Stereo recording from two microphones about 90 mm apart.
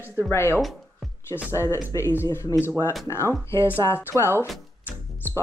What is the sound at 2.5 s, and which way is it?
Speech, 20° right (ahead or behind).